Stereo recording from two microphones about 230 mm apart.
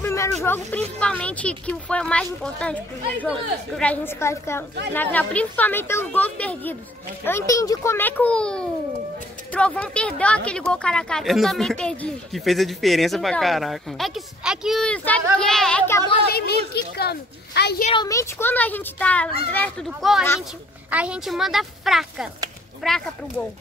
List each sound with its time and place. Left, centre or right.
0.0 s a woman's voice: centre
16.3 s a woman's voice: left
17.8 s a woman's voice: centre